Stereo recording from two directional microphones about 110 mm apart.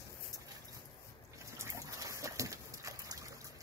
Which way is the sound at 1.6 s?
30° right (ahead or behind).